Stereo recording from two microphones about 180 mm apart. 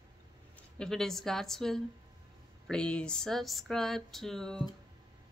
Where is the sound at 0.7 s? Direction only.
Centre (ahead or behind).